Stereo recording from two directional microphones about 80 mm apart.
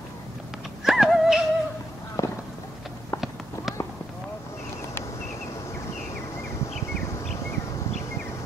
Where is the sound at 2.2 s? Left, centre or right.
Left.